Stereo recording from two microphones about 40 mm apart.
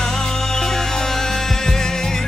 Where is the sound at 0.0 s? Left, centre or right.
Centre.